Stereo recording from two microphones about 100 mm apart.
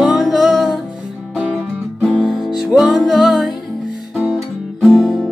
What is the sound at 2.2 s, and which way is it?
Music, centre (ahead or behind).